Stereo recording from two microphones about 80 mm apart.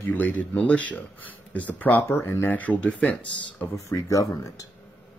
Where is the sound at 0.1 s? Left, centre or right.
Left.